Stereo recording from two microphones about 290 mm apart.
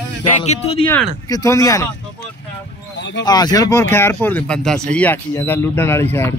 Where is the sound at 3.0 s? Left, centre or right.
Left.